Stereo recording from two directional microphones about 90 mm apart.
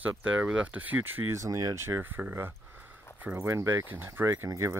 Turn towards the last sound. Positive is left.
turn(degrees=-35)  # may be behind; listen again after turning